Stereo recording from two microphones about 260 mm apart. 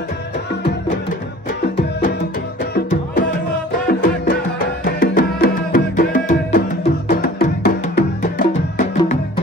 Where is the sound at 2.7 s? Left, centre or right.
Left.